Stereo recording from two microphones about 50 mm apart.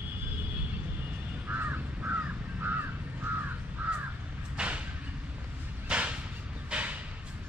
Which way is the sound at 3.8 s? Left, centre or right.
Right.